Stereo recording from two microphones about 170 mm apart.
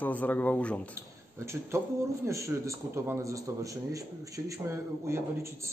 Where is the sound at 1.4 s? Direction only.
15° right (ahead or behind).